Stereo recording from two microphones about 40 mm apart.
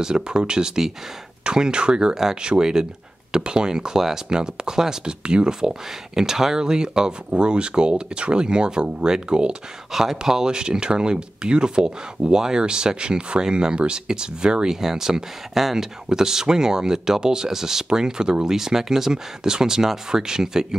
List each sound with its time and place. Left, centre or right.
0.0 s speech: right
9.9 s speech: centre